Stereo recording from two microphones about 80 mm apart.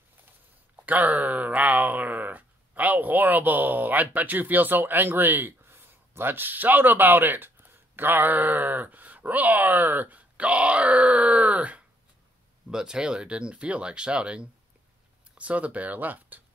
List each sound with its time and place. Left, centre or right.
0.8 s speech: right